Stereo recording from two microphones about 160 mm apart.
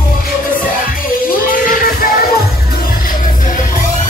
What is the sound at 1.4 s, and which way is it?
Music, 60° left (ahead or behind).